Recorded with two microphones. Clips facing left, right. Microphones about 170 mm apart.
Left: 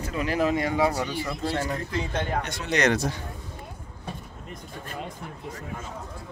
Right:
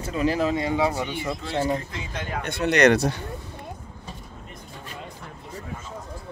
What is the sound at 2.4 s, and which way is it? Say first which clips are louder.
Speech: right 9 dB; 60° right (ahead or behind).